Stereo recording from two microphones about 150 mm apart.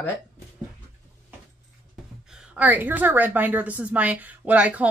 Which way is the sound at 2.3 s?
10° right (ahead or behind).